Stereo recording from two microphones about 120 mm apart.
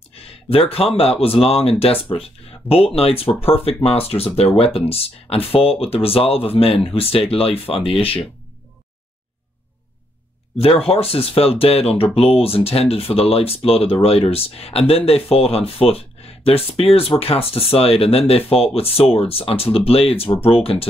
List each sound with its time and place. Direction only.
0.1 s speech: 55° left (ahead or behind)
10.6 s speech: 55° left (ahead or behind)
20.3 s speech: 30° left (ahead or behind)